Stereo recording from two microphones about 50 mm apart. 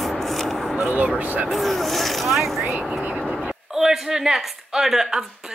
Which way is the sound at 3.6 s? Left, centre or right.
Centre.